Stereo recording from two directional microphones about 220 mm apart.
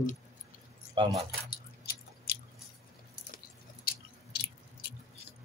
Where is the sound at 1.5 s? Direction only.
45° left (ahead or behind).